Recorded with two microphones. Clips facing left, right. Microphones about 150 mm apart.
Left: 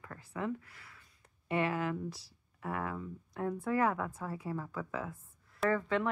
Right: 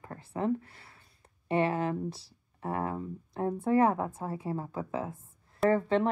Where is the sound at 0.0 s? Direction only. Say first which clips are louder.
Right 6 dB; 30° right (ahead or behind).